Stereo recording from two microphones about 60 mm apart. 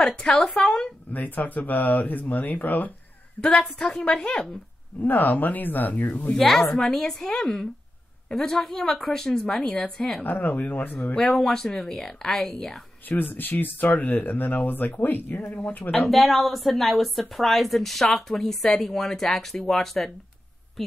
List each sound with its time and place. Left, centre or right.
0.0 s a woman's voice: centre
1.1 s speech: left
3.3 s a woman's voice: centre
4.0 s a woman's voice: centre
5.0 s speech: left
6.3 s a woman's voice: centre
10.2 s speech: left
11.1 s a woman's voice: centre
13.1 s speech: left
16.1 s a woman's voice: centre